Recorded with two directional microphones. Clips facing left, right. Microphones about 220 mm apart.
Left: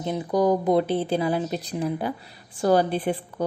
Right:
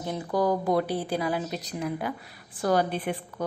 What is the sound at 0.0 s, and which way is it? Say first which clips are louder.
A woman's voice: left 4 dB; 20° left (ahead or behind).